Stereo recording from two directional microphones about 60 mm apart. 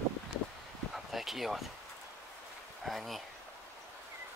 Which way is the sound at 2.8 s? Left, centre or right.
Centre.